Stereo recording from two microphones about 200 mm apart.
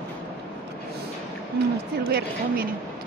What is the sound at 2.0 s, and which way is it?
Speech, 50° right (ahead or behind).